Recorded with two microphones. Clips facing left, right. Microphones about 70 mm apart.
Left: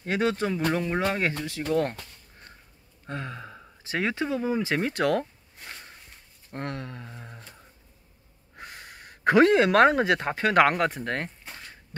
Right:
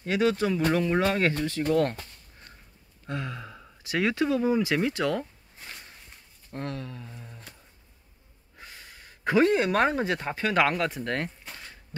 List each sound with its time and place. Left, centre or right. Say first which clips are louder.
0.0 s speech: right 1 dB; left
0.7 s speech: right 2 dB; centre
3.1 s speech: right 1 dB; left
4.9 s speech: left 3 dB; left
6.5 s speech: left 1 dB; left
7.1 s speech: left 2 dB; left
8.5 s a sound: left 4 dB; left
9.5 s speech: left 5 dB; left
11.0 s speech: even; left
11.9 s a sound: left 1 dB; left